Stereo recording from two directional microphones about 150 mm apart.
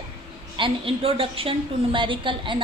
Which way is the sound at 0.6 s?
40° right (ahead or behind).